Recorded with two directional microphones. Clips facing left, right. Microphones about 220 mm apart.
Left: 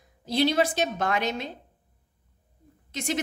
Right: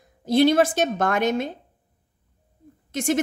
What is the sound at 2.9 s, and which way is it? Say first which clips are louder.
Speech: right 7 dB; 50° right (ahead or behind).